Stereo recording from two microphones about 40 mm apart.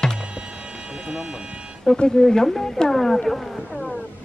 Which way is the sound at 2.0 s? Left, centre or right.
Centre.